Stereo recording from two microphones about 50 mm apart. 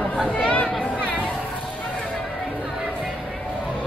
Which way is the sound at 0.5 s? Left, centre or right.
Left.